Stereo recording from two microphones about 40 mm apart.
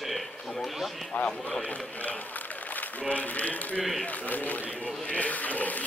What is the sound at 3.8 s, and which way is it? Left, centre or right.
Speech, centre.